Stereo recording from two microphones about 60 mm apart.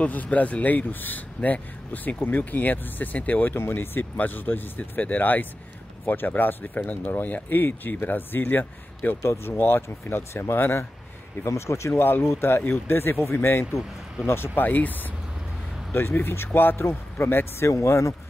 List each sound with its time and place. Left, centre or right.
0.0 s speech: left
3.5 s speech: left
9.2 s speech: left
9.5 s speech: left
11.4 s speech: left
12.0 s speech: left
17.6 s speech: left